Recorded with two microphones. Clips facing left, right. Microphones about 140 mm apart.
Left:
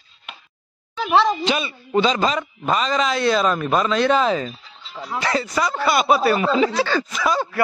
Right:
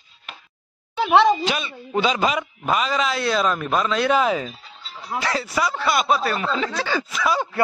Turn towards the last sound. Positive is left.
turn(degrees=0)  # may be behind; listen again after turning